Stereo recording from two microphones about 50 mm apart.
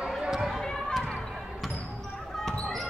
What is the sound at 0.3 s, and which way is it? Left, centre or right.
Run, centre.